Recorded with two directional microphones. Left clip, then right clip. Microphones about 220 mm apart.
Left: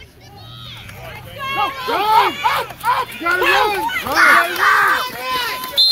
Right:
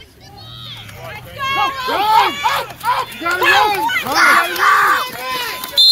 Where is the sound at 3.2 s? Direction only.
35° right (ahead or behind).